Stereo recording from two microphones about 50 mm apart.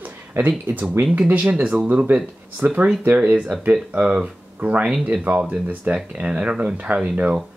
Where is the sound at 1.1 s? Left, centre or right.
Right.